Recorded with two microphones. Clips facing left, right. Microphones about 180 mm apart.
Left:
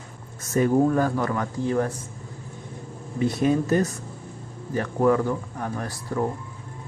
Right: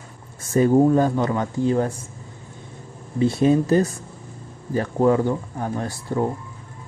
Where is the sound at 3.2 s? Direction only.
25° right (ahead or behind).